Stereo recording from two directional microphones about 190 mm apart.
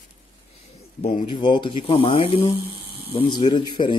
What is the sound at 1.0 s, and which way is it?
Speech, 45° left (ahead or behind).